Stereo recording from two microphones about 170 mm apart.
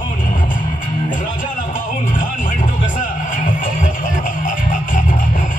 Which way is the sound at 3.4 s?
50° left (ahead or behind).